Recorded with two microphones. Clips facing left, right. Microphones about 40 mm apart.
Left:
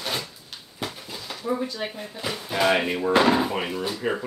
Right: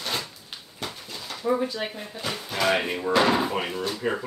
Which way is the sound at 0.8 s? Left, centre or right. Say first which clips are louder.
Left 2 dB; centre.